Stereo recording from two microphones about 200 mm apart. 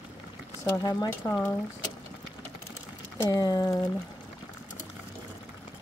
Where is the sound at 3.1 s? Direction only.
20° left (ahead or behind).